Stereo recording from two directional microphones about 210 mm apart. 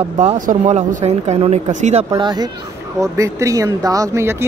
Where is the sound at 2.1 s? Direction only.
20° right (ahead or behind).